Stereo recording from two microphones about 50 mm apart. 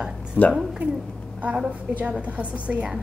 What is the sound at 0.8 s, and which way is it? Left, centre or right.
Speech, right.